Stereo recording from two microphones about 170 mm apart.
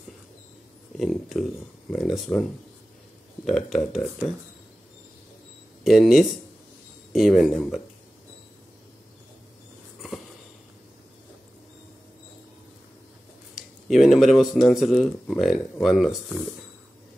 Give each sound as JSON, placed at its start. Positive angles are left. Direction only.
{"t": 0.9, "sound": "speech", "side_deg": 0}
{"t": 3.4, "sound": "speech", "side_deg": 0}
{"t": 5.9, "sound": "speech", "side_deg": 0}
{"t": 13.6, "sound": "speech", "side_deg": 0}